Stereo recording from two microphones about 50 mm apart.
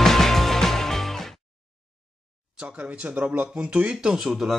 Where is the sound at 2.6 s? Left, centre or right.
Right.